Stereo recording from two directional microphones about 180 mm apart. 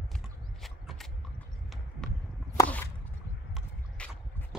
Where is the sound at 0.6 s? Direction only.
Centre (ahead or behind).